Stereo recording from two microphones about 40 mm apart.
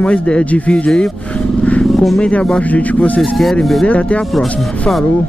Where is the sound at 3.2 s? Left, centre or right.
Centre.